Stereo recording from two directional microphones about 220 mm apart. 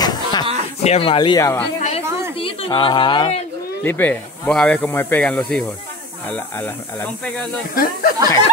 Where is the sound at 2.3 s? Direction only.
25° left (ahead or behind).